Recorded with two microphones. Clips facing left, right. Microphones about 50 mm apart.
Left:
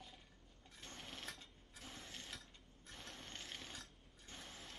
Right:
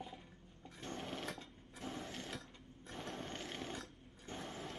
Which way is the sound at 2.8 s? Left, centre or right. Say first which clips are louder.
Right 9 dB; centre.